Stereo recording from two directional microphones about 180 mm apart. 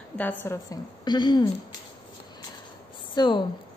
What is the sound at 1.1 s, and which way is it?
Speech, 25° left (ahead or behind).